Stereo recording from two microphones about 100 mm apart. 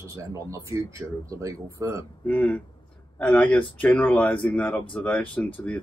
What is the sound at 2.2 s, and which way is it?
Speech, 10° left (ahead or behind).